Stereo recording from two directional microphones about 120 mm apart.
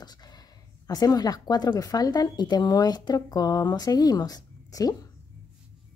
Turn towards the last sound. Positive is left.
turn(degrees=30)  # may be behind; listen again after turning